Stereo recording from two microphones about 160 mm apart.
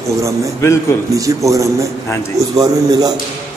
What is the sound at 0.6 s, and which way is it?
Speech, 15° left (ahead or behind).